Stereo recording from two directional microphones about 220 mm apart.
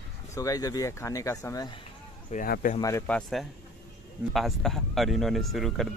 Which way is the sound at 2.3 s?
40° left (ahead or behind).